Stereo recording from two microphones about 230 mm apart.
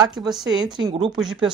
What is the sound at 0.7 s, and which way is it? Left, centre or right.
Speech, centre.